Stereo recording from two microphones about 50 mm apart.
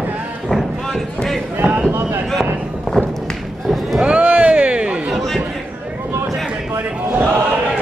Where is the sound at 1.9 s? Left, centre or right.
Right.